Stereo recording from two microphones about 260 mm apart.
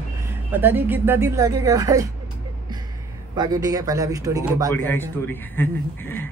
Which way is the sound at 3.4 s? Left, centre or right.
Centre.